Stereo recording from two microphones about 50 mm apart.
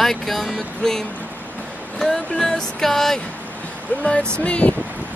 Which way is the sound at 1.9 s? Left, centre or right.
Centre.